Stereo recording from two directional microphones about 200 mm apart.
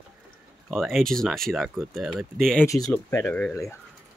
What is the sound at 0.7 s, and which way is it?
Speech, centre (ahead or behind).